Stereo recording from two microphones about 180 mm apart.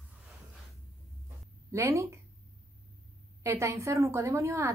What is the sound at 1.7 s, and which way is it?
Speech, 15° right (ahead or behind).